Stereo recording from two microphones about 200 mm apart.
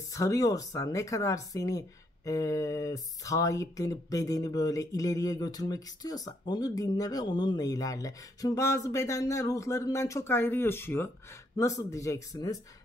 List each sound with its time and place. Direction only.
0.1 s speech: 15° left (ahead or behind)